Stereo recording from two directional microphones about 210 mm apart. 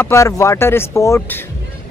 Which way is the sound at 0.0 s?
15° left (ahead or behind).